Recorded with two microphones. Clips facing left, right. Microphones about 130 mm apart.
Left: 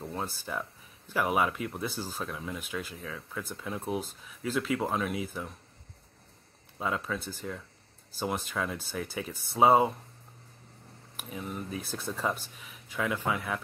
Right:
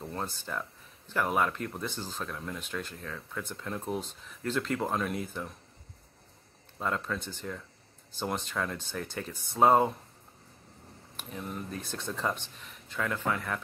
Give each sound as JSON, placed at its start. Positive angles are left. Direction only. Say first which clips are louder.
{"t": 0.0, "sound": "speech", "louder": "left 1 dB", "side_deg": 5}
{"t": 6.8, "sound": "speech", "louder": "even", "side_deg": 5}
{"t": 11.1, "sound": "speech", "louder": "left 1 dB", "side_deg": 5}